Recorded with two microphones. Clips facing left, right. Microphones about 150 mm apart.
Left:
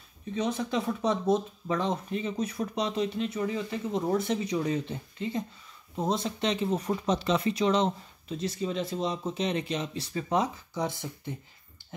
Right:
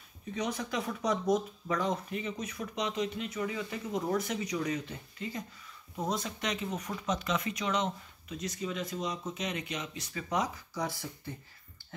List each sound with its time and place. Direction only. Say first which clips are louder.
0.3 s speech: left 5 dB; 25° left (ahead or behind)